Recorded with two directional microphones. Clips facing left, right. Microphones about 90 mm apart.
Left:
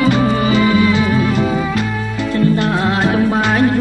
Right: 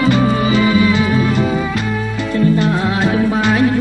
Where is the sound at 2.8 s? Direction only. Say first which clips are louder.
Left 1 dB; 55° left (ahead or behind).